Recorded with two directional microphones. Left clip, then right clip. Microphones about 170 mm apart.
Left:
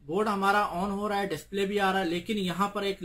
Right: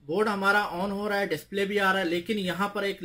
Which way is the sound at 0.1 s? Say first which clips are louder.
Right 2 dB; 70° left (ahead or behind).